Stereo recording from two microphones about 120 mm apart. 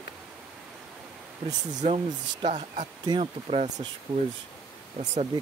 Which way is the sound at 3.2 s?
55° right (ahead or behind).